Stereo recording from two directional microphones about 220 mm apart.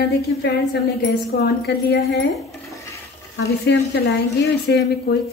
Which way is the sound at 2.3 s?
Centre (ahead or behind).